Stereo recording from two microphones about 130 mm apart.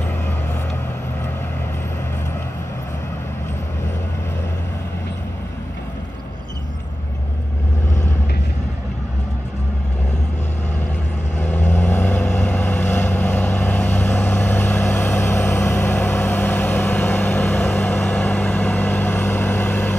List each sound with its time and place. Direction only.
11.3 s vehicle: 15° left (ahead or behind)